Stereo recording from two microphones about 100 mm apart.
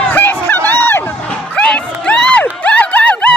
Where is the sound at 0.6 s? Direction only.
20° left (ahead or behind).